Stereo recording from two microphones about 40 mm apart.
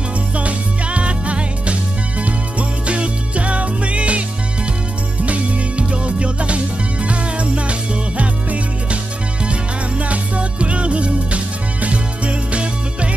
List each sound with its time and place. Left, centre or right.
0.4 s music: right
5.2 s music: right